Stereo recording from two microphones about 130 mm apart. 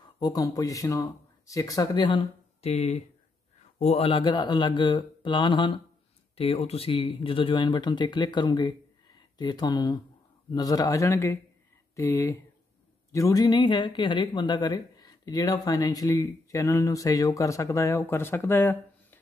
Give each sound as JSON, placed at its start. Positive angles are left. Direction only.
{"t": 0.2, "sound": "speech", "side_deg": 30}
{"t": 2.0, "sound": "speech", "side_deg": 40}
{"t": 2.7, "sound": "a man's voice", "side_deg": 55}
{"t": 4.1, "sound": "speech", "side_deg": 35}